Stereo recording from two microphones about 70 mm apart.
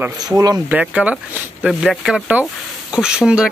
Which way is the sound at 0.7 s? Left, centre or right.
Centre.